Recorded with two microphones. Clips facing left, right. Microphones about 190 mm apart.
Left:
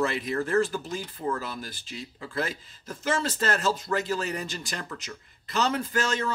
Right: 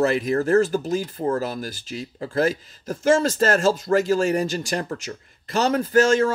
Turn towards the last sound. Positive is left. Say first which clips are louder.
# right 11 dB
turn(degrees=-45)  # may be behind; listen again after turning